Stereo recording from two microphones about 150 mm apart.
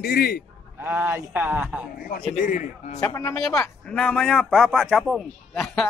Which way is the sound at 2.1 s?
65° left (ahead or behind).